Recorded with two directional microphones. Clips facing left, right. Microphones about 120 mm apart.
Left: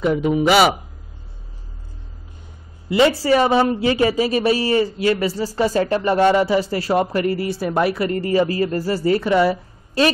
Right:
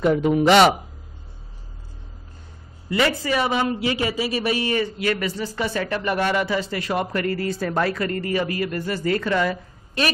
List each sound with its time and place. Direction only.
0.0 s speech: 5° left (ahead or behind)
2.9 s speech: 30° left (ahead or behind)